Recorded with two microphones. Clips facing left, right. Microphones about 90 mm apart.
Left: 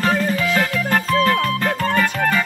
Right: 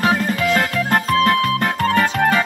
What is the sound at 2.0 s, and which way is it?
Music, 15° right (ahead or behind).